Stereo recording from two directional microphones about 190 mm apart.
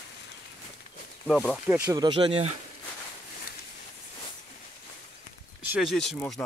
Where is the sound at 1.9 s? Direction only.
25° right (ahead or behind).